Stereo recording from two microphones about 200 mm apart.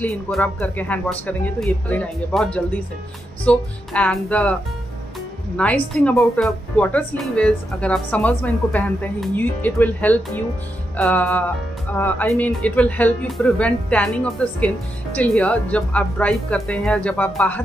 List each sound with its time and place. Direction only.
0.0 s a woman's voice: 5° left (ahead or behind)
5.6 s a woman's voice: 5° left (ahead or behind)